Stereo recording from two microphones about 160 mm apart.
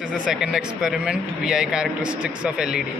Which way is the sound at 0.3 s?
5° right (ahead or behind).